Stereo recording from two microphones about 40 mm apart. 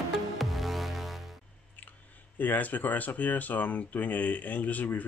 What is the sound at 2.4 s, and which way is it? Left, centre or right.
Speech, left.